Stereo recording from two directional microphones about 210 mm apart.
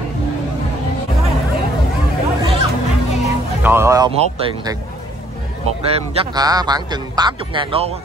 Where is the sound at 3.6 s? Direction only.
10° right (ahead or behind).